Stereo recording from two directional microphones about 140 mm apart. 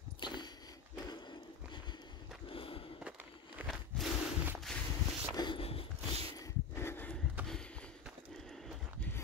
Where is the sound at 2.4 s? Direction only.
40° left (ahead or behind).